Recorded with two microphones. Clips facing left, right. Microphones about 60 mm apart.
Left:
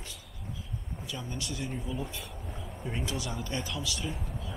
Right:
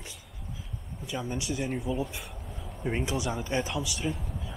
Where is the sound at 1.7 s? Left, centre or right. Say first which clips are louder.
Right 5 dB; centre.